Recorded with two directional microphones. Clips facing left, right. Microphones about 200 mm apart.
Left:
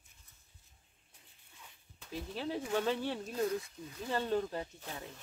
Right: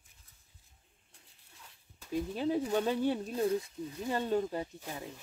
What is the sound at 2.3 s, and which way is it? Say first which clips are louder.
Speech: right 4 dB; 15° right (ahead or behind).